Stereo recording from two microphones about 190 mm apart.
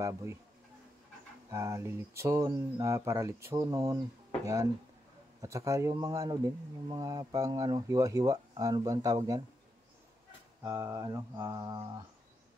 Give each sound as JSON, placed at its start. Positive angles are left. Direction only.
{"t": 0.0, "sound": "speech", "side_deg": -15}
{"t": 1.5, "sound": "speech", "side_deg": -15}
{"t": 5.4, "sound": "speech", "side_deg": -15}
{"t": 10.6, "sound": "speech", "side_deg": -15}